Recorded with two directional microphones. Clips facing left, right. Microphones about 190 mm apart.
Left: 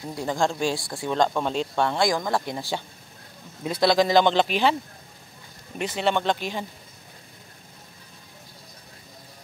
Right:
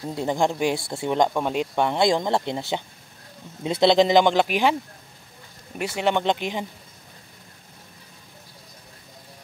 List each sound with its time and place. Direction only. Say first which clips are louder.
0.0 s speech: right 2 dB; 25° right (ahead or behind)
5.8 s speech: right 1 dB; 10° right (ahead or behind)